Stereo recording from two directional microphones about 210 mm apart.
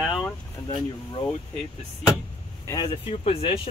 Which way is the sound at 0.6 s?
20° left (ahead or behind).